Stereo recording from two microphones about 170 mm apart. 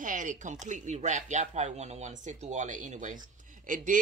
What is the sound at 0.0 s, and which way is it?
Speech, 50° right (ahead or behind).